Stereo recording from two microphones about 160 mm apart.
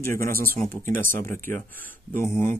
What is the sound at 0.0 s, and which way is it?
Speech, 15° left (ahead or behind).